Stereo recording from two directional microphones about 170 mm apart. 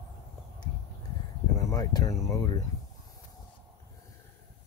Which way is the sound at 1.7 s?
20° left (ahead or behind).